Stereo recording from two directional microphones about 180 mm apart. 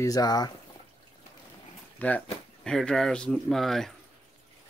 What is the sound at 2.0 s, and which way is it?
Speech, 10° left (ahead or behind).